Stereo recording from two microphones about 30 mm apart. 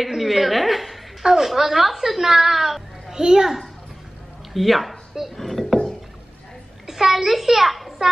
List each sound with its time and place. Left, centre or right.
0.0 s a sound: centre
1.2 s a woman's voice: centre
1.5 s a woman's voice: centre
3.1 s a child's voice: right
4.6 s speech: centre
5.3 s a sound: centre
6.9 s a child's voice: centre